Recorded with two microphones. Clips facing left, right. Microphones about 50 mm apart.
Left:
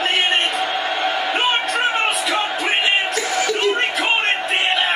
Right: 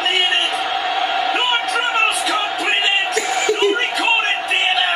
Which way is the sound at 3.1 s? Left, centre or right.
Right.